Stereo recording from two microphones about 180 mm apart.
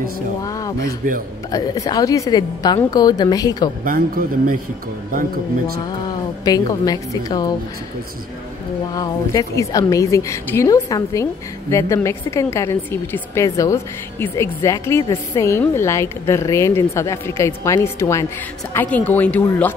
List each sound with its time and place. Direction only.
0.4 s a woman's voice: 20° left (ahead or behind)
3.8 s a man's voice: 50° right (ahead or behind)
6.4 s a woman's voice: 20° left (ahead or behind)
8.9 s a woman's voice: 20° left (ahead or behind)